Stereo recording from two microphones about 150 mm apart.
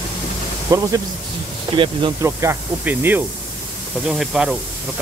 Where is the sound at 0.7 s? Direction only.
25° right (ahead or behind).